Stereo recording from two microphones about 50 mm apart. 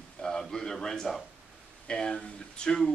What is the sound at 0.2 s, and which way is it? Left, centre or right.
A man's voice, centre.